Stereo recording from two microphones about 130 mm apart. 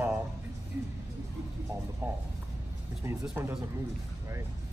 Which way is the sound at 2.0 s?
20° right (ahead or behind).